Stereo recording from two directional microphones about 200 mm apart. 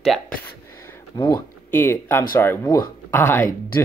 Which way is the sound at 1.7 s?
10° left (ahead or behind).